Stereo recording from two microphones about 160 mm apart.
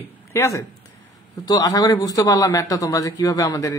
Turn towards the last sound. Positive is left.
turn(degrees=20)  # may be behind; listen again after turning